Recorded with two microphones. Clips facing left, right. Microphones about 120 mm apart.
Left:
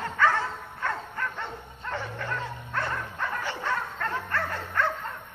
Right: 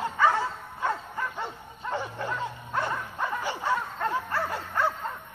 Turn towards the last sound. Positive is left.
turn(degrees=-10)  # may be behind; listen again after turning